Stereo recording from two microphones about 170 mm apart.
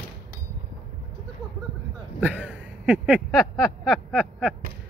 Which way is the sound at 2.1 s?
10° right (ahead or behind).